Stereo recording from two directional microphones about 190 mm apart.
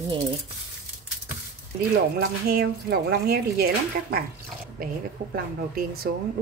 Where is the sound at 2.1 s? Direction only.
55° right (ahead or behind).